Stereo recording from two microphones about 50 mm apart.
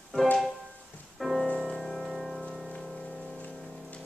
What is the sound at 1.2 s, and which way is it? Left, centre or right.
Music, centre.